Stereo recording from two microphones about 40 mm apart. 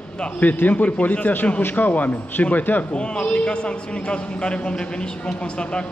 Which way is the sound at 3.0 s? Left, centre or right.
Left.